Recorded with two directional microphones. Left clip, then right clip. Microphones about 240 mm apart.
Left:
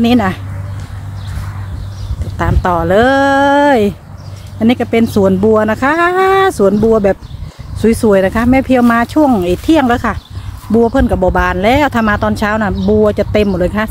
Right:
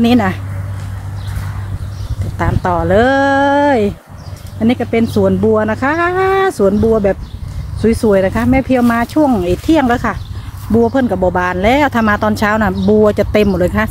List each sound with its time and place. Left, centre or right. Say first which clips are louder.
0.0 s speech: left 1 dB; centre
2.3 s speech: left 2 dB; centre